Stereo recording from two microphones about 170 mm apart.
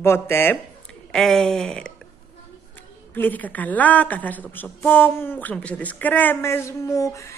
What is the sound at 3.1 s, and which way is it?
A woman's voice, 10° left (ahead or behind).